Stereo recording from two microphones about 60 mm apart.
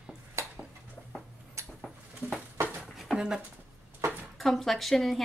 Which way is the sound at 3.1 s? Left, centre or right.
Centre.